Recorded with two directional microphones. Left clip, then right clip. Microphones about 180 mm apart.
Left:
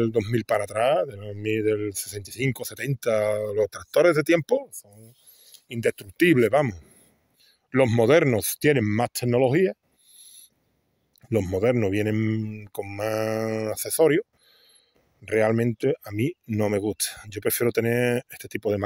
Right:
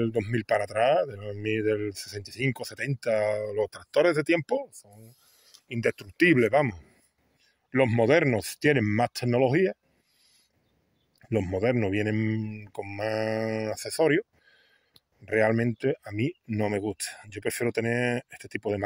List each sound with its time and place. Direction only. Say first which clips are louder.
0.0 s speech: left 4 dB; 40° left (ahead or behind); by 2.5 s 25° left (ahead or behind)
2.5 s speech: left 1 dB; 35° left (ahead or behind)
4.6 s speech: left 3 dB; 20° left (ahead or behind)
5.7 s speech: left 2 dB; 35° left (ahead or behind)
11.2 s speech: left 4 dB; 35° left (ahead or behind)
15.2 s speech: left 2 dB; 30° left (ahead or behind)